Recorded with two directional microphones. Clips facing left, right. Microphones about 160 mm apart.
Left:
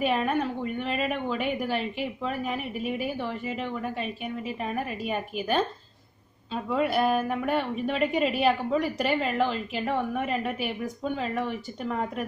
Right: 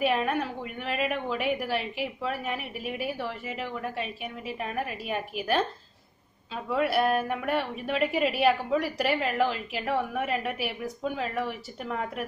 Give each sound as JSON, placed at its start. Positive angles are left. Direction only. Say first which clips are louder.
{"t": 0.0, "sound": "a woman's voice", "louder": "left 1 dB", "side_deg": 0}